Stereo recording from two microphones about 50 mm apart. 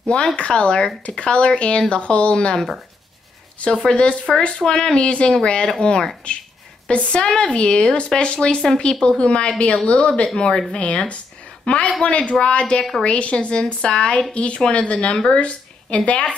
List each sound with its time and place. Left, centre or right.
0.4 s a woman's voice: centre